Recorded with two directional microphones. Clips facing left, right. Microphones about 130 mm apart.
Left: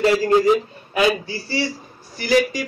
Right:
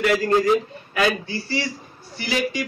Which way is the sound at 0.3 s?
15° left (ahead or behind).